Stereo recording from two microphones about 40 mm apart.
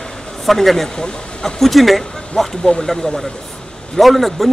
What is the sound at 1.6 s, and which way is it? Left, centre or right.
Speech, centre.